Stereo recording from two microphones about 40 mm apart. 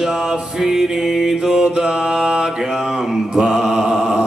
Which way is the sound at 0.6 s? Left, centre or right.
Centre.